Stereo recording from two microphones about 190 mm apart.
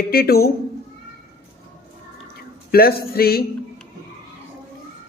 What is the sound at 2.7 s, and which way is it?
Speech, 55° left (ahead or behind).